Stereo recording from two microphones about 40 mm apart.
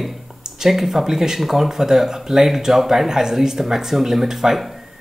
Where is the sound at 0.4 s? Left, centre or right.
Centre.